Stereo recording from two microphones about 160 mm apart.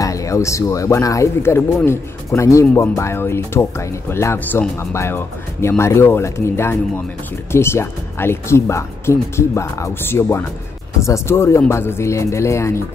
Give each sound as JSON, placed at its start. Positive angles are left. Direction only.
{"t": 0.0, "sound": "speech", "side_deg": 20}